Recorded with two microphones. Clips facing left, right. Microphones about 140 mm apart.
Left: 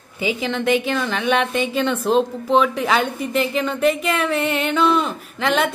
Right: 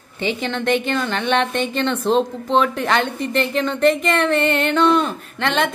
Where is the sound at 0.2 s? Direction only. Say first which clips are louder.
Left 1 dB; 5° left (ahead or behind).